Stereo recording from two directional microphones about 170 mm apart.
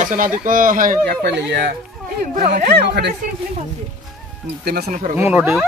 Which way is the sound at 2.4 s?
45° right (ahead or behind).